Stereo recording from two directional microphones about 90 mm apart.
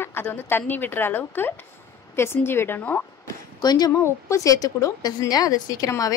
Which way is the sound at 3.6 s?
50° left (ahead or behind).